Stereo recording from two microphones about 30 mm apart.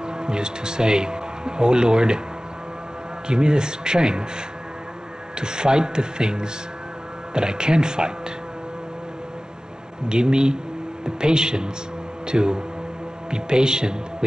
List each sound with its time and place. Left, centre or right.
0.0 s speech: right
3.3 s speech: right
5.4 s speech: right
10.0 s speech: right